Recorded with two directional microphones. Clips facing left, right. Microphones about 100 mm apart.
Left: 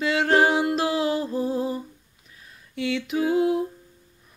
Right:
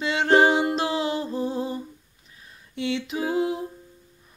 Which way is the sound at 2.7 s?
25° right (ahead or behind).